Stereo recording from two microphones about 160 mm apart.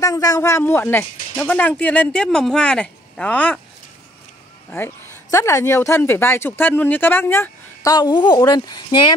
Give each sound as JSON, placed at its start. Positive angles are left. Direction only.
{"t": 0.0, "sound": "speech", "side_deg": 20}
{"t": 4.6, "sound": "speech", "side_deg": 15}